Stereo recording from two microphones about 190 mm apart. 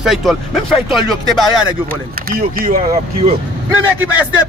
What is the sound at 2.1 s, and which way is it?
Speech, 50° right (ahead or behind).